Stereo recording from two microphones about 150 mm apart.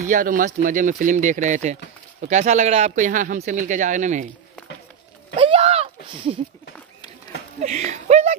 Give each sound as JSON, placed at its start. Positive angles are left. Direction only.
{"t": 0.0, "sound": "speech", "side_deg": -60}
{"t": 3.1, "sound": "speech", "side_deg": -60}
{"t": 5.3, "sound": "a sound", "side_deg": -40}
{"t": 7.6, "sound": "speech", "side_deg": -50}